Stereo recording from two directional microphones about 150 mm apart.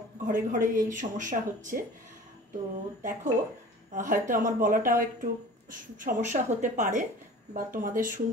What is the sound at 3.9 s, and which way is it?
A woman's voice, 60° right (ahead or behind).